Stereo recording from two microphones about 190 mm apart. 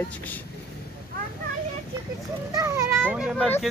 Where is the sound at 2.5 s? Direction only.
15° right (ahead or behind).